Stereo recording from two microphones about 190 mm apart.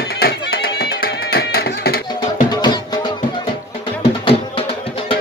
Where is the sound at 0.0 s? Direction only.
55° left (ahead or behind).